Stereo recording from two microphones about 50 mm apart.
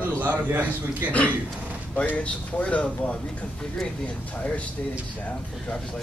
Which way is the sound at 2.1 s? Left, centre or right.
Left.